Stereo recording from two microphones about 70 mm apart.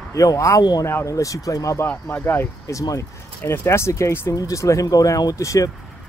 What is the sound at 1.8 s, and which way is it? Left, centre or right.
Speech, left.